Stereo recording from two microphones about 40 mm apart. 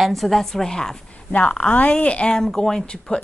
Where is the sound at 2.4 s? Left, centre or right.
Centre.